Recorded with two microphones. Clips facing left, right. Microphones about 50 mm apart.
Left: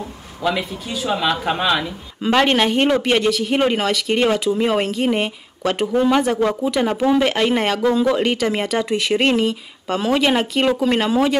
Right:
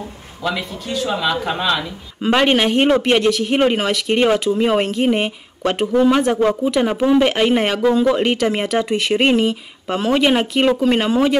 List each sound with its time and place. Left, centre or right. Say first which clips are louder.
0.4 s speech: left 2 dB; centre
2.2 s speech: right 1 dB; centre